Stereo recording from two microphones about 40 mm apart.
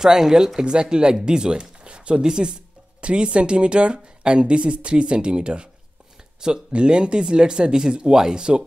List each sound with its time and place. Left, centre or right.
0.0 s speech: centre